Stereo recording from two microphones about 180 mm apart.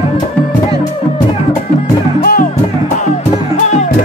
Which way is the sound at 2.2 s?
55° left (ahead or behind).